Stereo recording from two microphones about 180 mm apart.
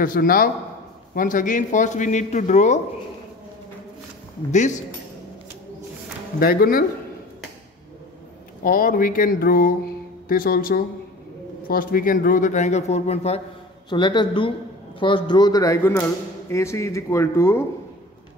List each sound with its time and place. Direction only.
0.0 s a man's voice: 50° left (ahead or behind)
4.5 s speech: 40° left (ahead or behind)
6.4 s speech: 55° left (ahead or behind)
8.6 s a man's voice: 50° left (ahead or behind); by 13.4 s 35° left (ahead or behind)
13.8 s a man's voice: 25° left (ahead or behind)